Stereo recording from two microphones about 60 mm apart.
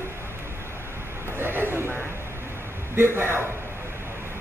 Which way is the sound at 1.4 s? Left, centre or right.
Right.